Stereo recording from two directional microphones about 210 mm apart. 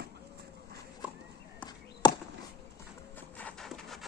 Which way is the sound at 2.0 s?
20° left (ahead or behind).